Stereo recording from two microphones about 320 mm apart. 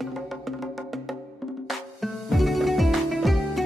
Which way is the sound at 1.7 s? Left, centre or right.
Centre.